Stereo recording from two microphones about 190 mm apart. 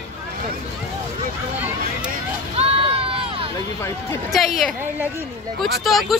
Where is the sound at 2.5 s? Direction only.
30° right (ahead or behind).